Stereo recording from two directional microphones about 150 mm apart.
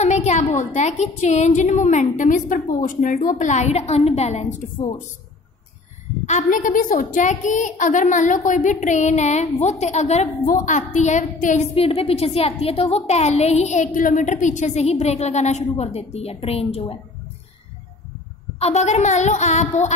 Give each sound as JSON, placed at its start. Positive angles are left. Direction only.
{"t": 0.0, "sound": "a woman's voice", "side_deg": 50}
{"t": 6.2, "sound": "a woman's voice", "side_deg": 60}
{"t": 11.7, "sound": "a woman's voice", "side_deg": 40}
{"t": 13.9, "sound": "a woman's voice", "side_deg": 60}
{"t": 18.6, "sound": "a woman's voice", "side_deg": 45}